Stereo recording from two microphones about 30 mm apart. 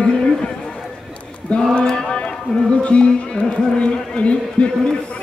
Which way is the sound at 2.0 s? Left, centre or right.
Left.